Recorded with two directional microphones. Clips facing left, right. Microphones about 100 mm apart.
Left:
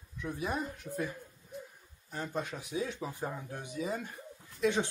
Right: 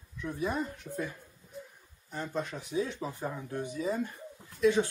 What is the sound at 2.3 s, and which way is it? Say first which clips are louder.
Speech: right 3 dB; 10° left (ahead or behind).